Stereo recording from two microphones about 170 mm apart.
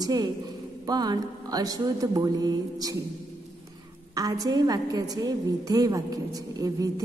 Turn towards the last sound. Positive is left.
turn(degrees=-20)  # may be behind; listen again after turning